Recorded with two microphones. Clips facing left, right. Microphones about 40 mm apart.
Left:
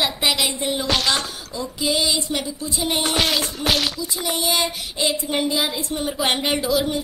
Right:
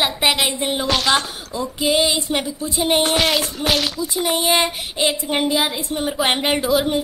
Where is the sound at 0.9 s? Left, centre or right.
Centre.